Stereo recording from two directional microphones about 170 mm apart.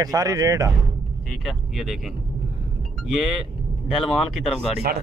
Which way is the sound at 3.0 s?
Centre (ahead or behind).